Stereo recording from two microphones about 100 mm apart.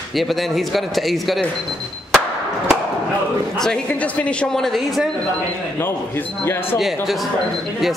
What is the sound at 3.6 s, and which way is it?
A woman's voice, 10° left (ahead or behind).